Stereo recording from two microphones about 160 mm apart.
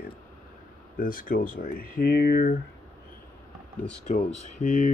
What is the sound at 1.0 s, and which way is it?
Speech, 60° left (ahead or behind).